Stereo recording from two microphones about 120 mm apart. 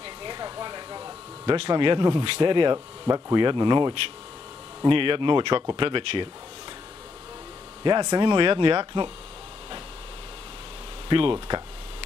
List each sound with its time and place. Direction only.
0.0 s a sound: 40° right (ahead or behind)
4.8 s speech: 45° right (ahead or behind)
7.8 s speech: 35° right (ahead or behind)
11.1 s speech: 45° right (ahead or behind)